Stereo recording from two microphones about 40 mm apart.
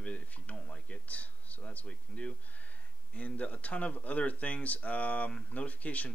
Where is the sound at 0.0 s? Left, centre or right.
Left.